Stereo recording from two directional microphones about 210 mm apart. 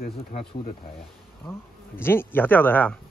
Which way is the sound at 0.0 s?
35° left (ahead or behind).